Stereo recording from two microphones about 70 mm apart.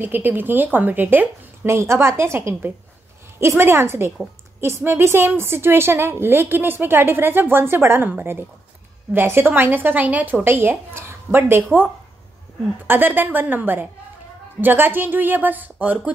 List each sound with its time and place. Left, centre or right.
0.0 s a woman's voice: right
1.7 s a woman's voice: right